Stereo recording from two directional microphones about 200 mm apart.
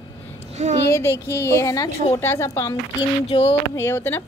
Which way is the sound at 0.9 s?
15° left (ahead or behind).